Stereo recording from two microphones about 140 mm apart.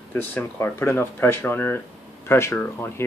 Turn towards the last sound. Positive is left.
turn(degrees=15)  # may be behind; listen again after turning